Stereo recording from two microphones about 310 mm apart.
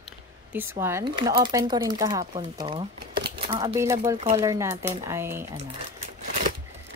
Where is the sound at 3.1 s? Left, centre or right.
Right.